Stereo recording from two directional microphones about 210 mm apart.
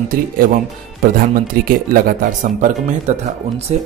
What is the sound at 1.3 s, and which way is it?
Speech, 45° right (ahead or behind).